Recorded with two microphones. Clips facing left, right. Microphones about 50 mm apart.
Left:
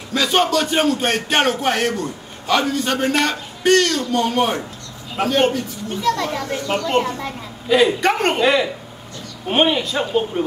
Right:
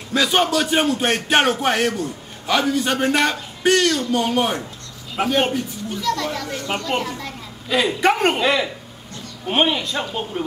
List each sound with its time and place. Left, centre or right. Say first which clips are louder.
0.1 s a man's voice: left 1 dB; centre
5.9 s a child's voice: left 3 dB; centre
7.6 s a man's voice: left 3 dB; centre